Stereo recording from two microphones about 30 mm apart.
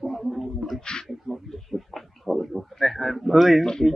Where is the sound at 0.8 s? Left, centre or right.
Left.